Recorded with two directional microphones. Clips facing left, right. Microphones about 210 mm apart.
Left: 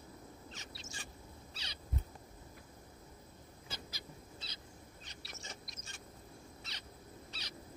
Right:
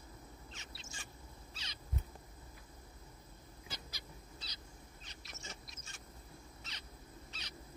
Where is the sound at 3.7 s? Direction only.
25° left (ahead or behind).